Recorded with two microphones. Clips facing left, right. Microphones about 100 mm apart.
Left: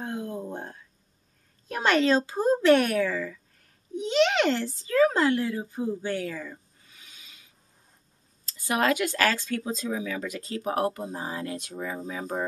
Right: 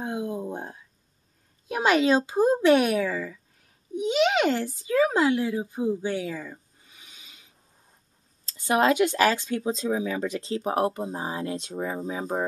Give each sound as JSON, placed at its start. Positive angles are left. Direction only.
{"t": 0.0, "sound": "a sound", "side_deg": -15}
{"t": 1.7, "sound": "a child's voice", "side_deg": -10}
{"t": 8.5, "sound": "speech", "side_deg": -25}